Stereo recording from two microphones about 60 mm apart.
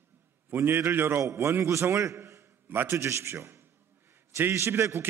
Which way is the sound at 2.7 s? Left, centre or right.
Right.